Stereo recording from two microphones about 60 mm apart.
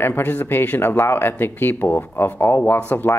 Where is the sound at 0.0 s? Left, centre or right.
Left.